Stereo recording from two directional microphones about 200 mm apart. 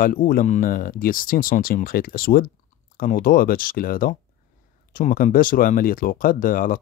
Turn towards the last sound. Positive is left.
turn(degrees=45)  # may be behind; listen again after turning